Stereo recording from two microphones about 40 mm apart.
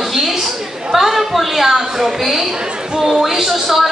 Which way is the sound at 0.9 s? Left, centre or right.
Centre.